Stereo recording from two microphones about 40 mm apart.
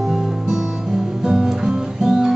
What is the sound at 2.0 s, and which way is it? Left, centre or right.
Guitar, centre.